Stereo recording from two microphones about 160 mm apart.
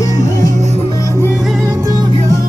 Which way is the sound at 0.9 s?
20° left (ahead or behind).